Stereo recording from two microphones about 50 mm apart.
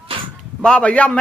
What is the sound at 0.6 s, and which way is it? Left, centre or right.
Speech, left.